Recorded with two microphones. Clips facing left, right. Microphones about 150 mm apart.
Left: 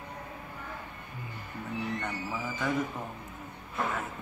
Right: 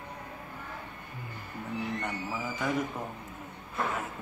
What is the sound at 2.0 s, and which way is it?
Speech, 10° right (ahead or behind).